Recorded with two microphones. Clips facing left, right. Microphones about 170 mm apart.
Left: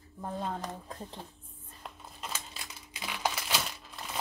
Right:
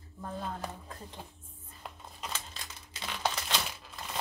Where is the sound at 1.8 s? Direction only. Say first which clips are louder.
Even; centre (ahead or behind).